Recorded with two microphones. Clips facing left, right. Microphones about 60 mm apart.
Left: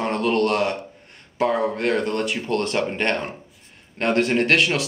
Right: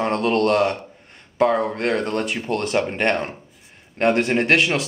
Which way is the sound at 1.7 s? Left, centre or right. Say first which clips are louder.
Even; centre.